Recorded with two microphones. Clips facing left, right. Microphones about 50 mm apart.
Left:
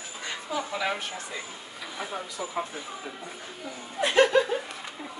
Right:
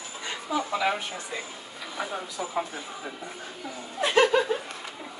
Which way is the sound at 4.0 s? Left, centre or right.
Centre.